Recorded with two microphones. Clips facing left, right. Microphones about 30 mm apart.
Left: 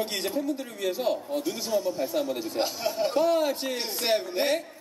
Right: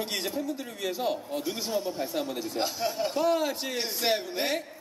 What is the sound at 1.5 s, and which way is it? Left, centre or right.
Speech, right.